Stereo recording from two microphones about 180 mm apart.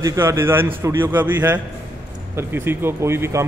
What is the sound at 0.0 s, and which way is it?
A man's voice, 15° right (ahead or behind).